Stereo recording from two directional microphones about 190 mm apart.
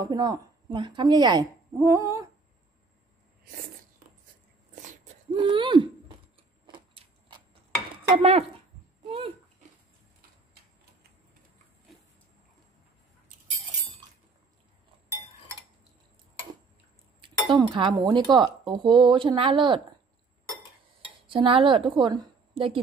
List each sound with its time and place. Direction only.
0.0 s speech: 20° right (ahead or behind)
5.3 s a sound: 25° right (ahead or behind)
6.7 s vehicle: 25° right (ahead or behind)
8.2 s speech: 30° right (ahead or behind)
9.0 s dog: 30° right (ahead or behind)
17.2 s chink: 25° right (ahead or behind)
17.7 s speech: 25° right (ahead or behind)
21.5 s a woman's voice: 30° right (ahead or behind)